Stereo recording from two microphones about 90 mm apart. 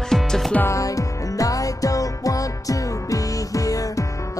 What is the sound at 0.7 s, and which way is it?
Music, 40° left (ahead or behind).